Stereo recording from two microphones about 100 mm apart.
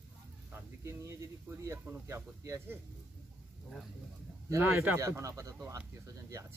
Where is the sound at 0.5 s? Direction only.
30° right (ahead or behind).